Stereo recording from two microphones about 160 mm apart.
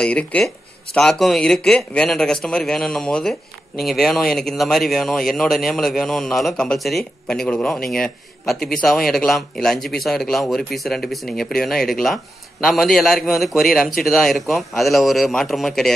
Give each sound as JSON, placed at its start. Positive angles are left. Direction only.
{"t": 0.0, "sound": "speech", "side_deg": 10}
{"t": 8.5, "sound": "a man's voice", "side_deg": 70}
{"t": 8.8, "sound": "speech", "side_deg": 0}